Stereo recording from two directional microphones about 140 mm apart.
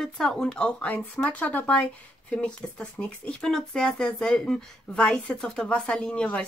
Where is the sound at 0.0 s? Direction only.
5° left (ahead or behind).